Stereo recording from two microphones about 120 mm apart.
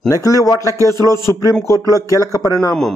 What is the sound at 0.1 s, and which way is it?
A man's voice, 30° left (ahead or behind).